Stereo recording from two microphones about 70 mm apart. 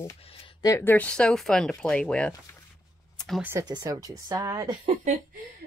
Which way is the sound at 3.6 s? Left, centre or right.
Right.